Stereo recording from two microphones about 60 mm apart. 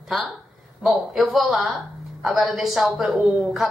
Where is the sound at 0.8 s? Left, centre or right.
Centre.